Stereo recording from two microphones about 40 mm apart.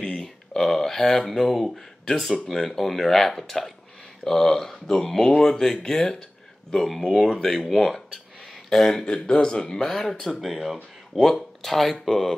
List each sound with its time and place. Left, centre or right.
0.6 s speech: centre
6.7 s speech: centre
8.9 s a man's voice: centre
9.8 s speech: centre